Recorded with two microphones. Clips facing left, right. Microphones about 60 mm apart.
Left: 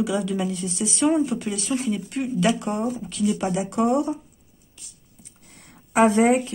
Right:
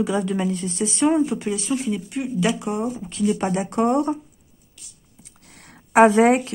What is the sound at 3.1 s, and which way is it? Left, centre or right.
Speech, right.